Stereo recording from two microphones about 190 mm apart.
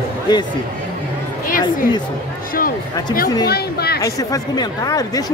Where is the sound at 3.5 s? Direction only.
55° left (ahead or behind).